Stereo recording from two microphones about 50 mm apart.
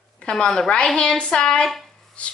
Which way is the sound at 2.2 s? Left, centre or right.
Left.